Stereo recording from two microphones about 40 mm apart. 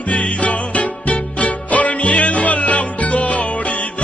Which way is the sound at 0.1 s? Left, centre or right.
Left.